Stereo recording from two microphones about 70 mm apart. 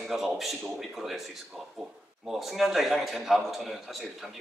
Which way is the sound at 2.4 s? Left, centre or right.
Centre.